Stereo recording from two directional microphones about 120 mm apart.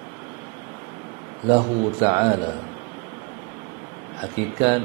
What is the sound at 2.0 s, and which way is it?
Speech, 25° right (ahead or behind).